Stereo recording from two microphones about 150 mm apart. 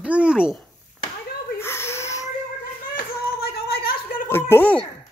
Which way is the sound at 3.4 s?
90° left.